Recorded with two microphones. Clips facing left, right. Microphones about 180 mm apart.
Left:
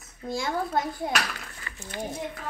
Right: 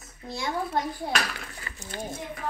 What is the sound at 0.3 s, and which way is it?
Speech, 25° left (ahead or behind).